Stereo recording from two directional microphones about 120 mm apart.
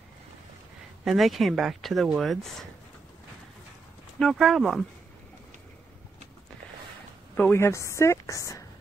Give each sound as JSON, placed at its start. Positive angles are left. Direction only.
{"t": 1.0, "sound": "speech", "side_deg": 0}
{"t": 4.2, "sound": "speech", "side_deg": 0}
{"t": 7.3, "sound": "a woman's voice", "side_deg": 20}